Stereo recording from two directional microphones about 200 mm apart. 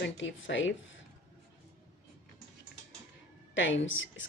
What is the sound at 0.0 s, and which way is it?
A woman's voice, 65° left (ahead or behind).